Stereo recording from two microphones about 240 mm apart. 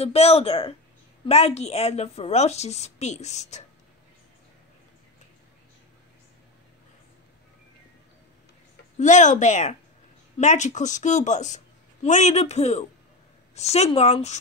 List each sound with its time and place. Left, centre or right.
0.0 s speech: left
8.9 s speech: left